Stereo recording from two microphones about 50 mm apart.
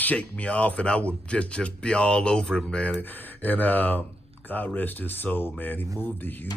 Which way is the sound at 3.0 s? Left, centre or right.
Left.